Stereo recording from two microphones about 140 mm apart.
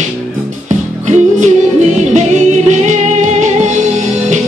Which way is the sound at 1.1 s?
55° right (ahead or behind).